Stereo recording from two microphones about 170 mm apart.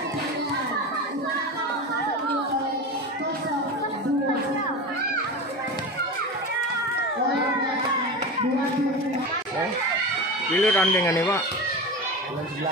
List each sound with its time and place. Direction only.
10.5 s speech: 10° left (ahead or behind)